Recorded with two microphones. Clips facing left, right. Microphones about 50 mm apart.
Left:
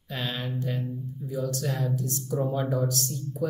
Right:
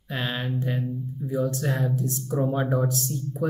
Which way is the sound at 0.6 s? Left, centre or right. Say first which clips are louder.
Right 3 dB; right.